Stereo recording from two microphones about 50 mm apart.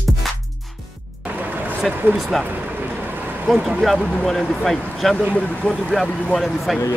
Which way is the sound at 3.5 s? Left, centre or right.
Centre.